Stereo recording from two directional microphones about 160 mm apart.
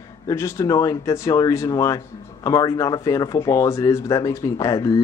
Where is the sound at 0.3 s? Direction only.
15° left (ahead or behind).